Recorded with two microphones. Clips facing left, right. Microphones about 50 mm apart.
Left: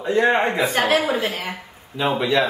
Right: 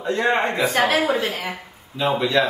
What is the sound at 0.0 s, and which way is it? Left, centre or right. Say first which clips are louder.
A man's voice: left 2 dB; centre.